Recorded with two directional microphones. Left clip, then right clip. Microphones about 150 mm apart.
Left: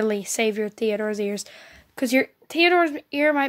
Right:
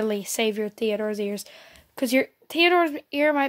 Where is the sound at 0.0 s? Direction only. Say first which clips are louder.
Left 2 dB; 5° right (ahead or behind).